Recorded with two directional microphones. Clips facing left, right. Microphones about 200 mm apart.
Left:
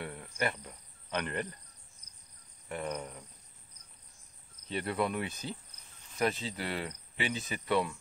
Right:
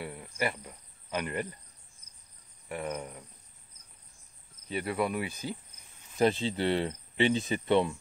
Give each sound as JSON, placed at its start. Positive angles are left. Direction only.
{"t": 0.0, "sound": "cricket", "side_deg": -5}
{"t": 2.7, "sound": "cricket", "side_deg": -5}
{"t": 4.6, "sound": "cricket", "side_deg": -5}
{"t": 6.1, "sound": "speech", "side_deg": -30}